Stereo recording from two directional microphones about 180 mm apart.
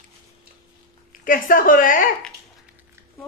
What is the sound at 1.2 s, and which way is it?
Speech, 50° left (ahead or behind).